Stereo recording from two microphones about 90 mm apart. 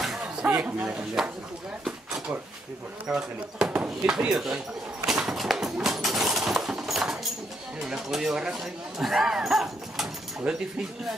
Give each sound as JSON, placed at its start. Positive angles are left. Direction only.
{"t": 0.0, "sound": "a sound", "side_deg": -5}
{"t": 0.5, "sound": "speech", "side_deg": -20}
{"t": 1.9, "sound": "dishes", "side_deg": -10}
{"t": 3.2, "sound": "speech", "side_deg": -10}
{"t": 5.0, "sound": "a sound", "side_deg": -5}
{"t": 7.8, "sound": "speech", "side_deg": -5}